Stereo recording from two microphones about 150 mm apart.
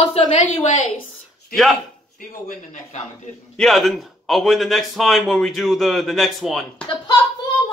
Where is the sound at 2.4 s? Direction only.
55° left (ahead or behind).